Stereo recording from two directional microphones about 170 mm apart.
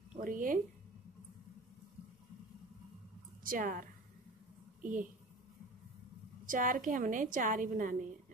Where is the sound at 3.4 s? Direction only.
55° right (ahead or behind).